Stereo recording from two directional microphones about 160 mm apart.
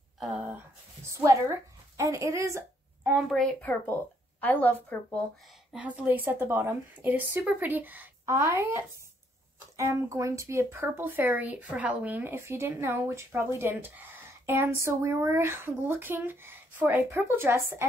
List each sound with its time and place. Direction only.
1.1 s a sound: 20° right (ahead or behind)
3.3 s a woman's voice: 5° left (ahead or behind)
5.7 s speech: 10° right (ahead or behind)